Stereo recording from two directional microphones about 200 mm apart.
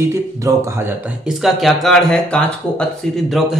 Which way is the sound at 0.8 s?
5° right (ahead or behind).